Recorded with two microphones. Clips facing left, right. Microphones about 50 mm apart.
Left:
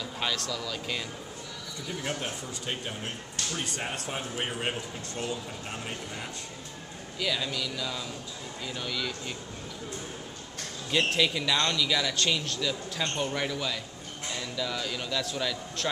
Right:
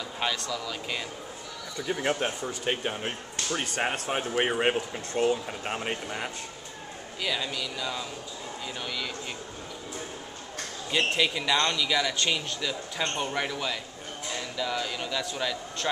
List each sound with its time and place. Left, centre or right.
0.5 s speech: centre
1.9 s speech: right
7.2 s speech: centre
10.9 s a man's voice: centre